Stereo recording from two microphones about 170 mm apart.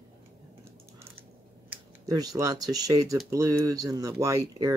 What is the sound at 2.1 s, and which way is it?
Speech, 20° right (ahead or behind).